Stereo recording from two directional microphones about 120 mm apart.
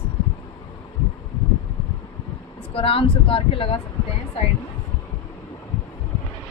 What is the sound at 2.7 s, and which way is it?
Speech, 50° left (ahead or behind).